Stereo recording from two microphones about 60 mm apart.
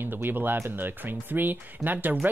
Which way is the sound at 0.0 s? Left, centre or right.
Right.